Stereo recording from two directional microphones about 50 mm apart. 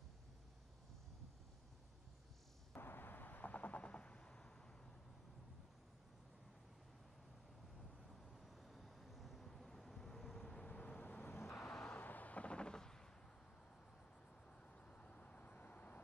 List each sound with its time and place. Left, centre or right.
2.7 s a sound: left; by 4.5 s centre
8.1 s vehicle: centre
11.0 s vehicle: left
11.3 s vehicle: left
11.8 s a sound: left; by 13.1 s centre
14.9 s vehicle: left